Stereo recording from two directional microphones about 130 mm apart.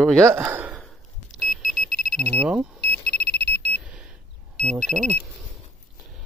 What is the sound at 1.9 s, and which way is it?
Alarm clock, 90° left.